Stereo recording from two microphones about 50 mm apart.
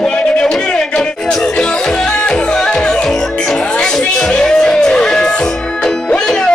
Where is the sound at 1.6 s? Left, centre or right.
Centre.